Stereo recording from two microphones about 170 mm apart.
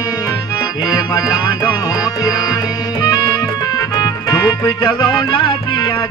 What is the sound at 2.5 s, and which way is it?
Music, 20° left (ahead or behind).